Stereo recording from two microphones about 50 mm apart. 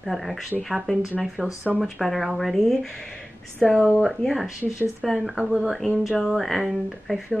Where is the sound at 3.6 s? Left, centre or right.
Centre.